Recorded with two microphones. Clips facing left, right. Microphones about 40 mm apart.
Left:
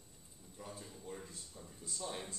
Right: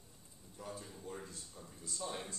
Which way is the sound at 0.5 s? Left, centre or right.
Centre.